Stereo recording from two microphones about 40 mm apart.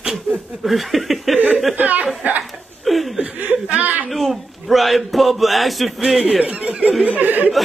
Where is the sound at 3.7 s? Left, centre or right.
Right.